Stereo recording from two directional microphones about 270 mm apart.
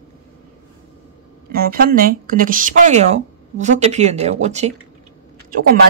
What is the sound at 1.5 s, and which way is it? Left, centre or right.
Speech, right.